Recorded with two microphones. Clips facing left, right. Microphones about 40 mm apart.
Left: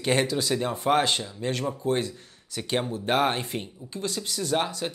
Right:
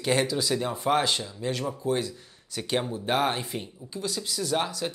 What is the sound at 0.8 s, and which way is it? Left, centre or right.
Speech, left.